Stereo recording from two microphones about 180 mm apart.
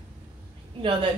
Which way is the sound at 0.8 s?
30° right (ahead or behind).